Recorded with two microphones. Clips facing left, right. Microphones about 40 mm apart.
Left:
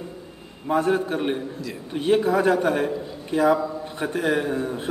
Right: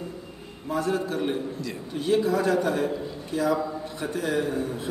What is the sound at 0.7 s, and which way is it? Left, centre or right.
A man's voice, left.